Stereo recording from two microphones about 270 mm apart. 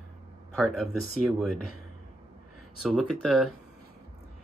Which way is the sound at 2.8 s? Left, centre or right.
Centre.